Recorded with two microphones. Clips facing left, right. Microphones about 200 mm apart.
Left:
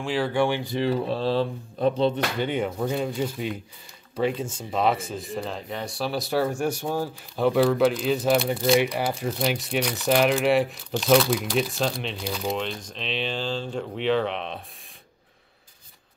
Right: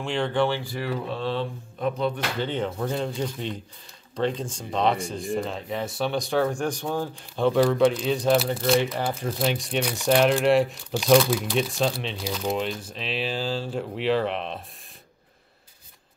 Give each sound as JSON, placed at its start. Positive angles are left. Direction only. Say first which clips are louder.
{"t": 0.0, "sound": "speech", "louder": "left 1 dB", "side_deg": 5}
{"t": 2.3, "sound": "speech", "louder": "left 2 dB", "side_deg": 10}
{"t": 8.7, "sound": "speech", "louder": "left 1 dB", "side_deg": 15}